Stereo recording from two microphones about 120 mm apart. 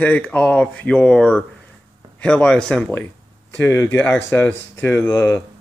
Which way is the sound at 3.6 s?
25° left (ahead or behind).